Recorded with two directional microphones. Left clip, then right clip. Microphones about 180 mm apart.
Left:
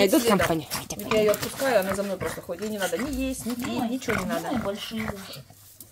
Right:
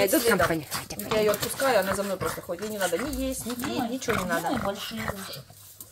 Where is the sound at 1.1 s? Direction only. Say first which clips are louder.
Left 2 dB; 5° left (ahead or behind).